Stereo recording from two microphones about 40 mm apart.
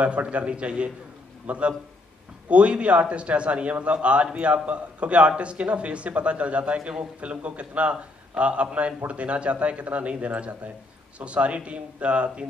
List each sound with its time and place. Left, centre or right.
0.0 s a man's voice: right